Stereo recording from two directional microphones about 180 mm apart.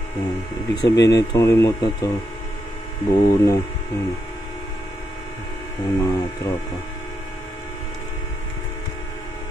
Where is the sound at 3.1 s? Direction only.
20° left (ahead or behind).